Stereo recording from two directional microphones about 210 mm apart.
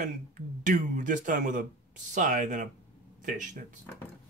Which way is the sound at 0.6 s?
35° right (ahead or behind).